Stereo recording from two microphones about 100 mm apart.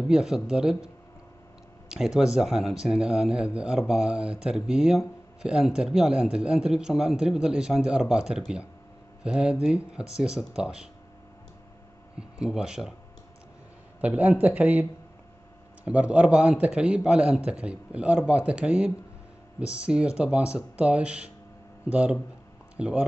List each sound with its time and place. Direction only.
0.1 s speech: 5° right (ahead or behind)
1.9 s speech: 5° right (ahead or behind)
12.2 s speech: 10° right (ahead or behind)
14.0 s speech: 15° right (ahead or behind)